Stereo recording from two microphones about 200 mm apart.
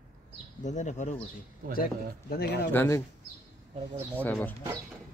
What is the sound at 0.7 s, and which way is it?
Speech, 35° left (ahead or behind).